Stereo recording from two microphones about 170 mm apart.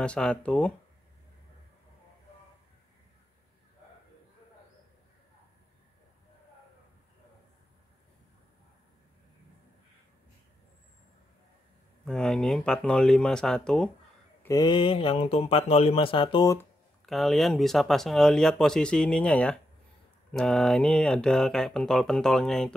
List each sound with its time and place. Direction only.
0.0 s speech: 5° left (ahead or behind)
12.0 s speech: 5° left (ahead or behind)
14.4 s speech: 20° left (ahead or behind)
17.0 s speech: centre (ahead or behind)